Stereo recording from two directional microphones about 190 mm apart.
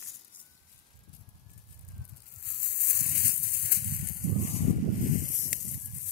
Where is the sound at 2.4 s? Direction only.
55° left (ahead or behind).